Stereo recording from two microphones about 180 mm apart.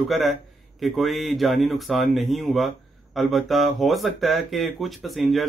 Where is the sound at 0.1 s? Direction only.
Centre (ahead or behind).